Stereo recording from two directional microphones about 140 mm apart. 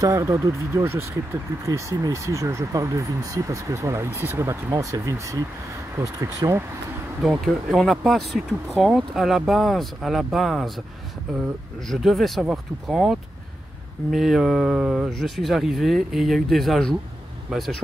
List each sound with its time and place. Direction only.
0.0 s speech: 25° right (ahead or behind)
7.2 s speech: centre (ahead or behind)
11.9 s speech: centre (ahead or behind)